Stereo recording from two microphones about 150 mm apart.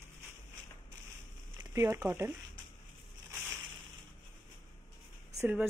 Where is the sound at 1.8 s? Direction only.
15° right (ahead or behind).